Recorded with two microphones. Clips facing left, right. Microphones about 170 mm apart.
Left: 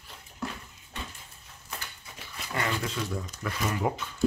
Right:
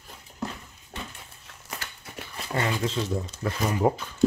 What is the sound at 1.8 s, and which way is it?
Shuffling cards, 85° right.